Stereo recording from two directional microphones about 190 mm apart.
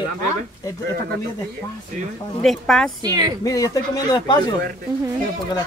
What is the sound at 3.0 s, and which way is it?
Speech, 20° right (ahead or behind).